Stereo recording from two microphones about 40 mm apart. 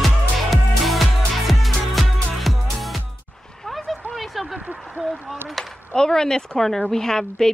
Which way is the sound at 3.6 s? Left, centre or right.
Centre.